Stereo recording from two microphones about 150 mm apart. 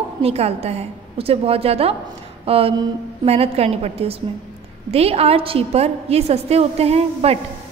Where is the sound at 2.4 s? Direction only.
40° right (ahead or behind).